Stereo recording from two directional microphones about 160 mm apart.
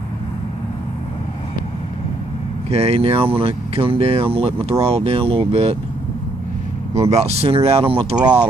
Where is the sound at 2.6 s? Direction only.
40° right (ahead or behind).